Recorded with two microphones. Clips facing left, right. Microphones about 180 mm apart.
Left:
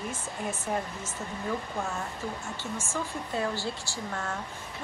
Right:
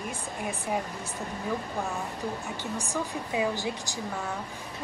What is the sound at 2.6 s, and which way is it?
Speech, 15° right (ahead or behind).